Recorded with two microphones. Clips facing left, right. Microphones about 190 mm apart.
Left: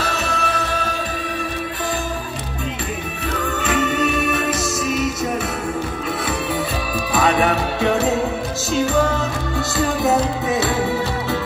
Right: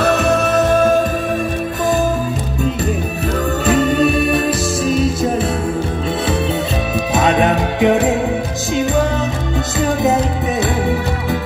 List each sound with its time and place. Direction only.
0.0 s music: 55° right (ahead or behind)
3.6 s music: 35° right (ahead or behind)
7.2 s music: 20° right (ahead or behind)
9.8 s music: 20° right (ahead or behind)